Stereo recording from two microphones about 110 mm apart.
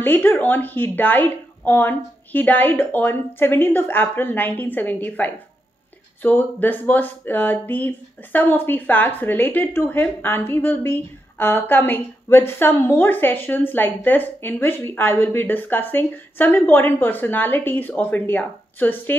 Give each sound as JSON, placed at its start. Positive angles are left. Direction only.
{"t": 0.0, "sound": "speech", "side_deg": 20}